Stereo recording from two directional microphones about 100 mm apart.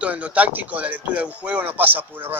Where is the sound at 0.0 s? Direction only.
15° right (ahead or behind).